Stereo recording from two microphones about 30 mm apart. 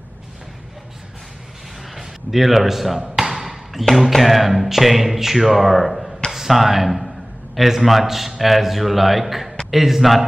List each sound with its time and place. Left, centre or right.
2.0 s a man's voice: centre